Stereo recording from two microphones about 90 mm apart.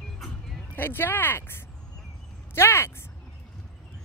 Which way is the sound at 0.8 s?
25° left (ahead or behind).